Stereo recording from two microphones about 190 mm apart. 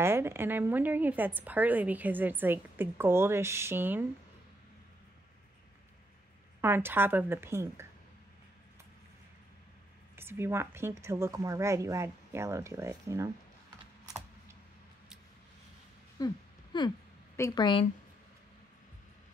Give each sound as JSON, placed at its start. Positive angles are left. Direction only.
{"t": 0.0, "sound": "a woman's voice", "side_deg": -15}
{"t": 6.6, "sound": "a woman's voice", "side_deg": -10}
{"t": 10.1, "sound": "a woman's voice", "side_deg": -10}
{"t": 16.7, "sound": "a woman's voice", "side_deg": 25}